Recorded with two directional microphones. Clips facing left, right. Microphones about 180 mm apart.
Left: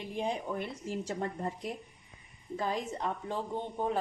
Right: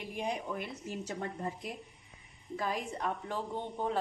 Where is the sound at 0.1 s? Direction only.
30° left (ahead or behind).